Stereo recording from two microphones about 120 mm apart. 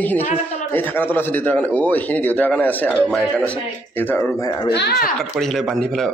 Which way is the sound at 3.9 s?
15° left (ahead or behind).